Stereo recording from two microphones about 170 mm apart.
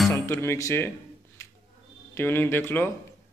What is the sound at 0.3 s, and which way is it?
Speech, 15° left (ahead or behind).